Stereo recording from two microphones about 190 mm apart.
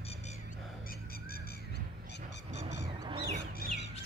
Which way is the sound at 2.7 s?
25° right (ahead or behind).